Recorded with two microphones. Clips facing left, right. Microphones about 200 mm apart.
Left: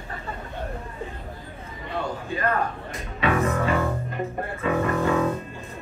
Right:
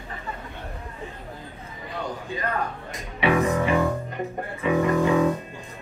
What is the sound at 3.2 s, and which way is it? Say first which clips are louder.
A woman's voice: right 2 dB; 15° right (ahead or behind).